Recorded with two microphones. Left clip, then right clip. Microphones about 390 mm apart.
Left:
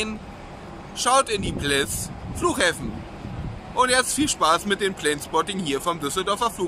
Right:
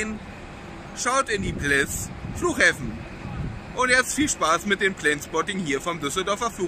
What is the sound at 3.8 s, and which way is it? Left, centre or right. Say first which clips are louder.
Speech: even; centre.